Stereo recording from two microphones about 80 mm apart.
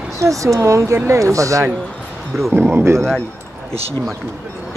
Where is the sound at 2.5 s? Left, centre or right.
Right.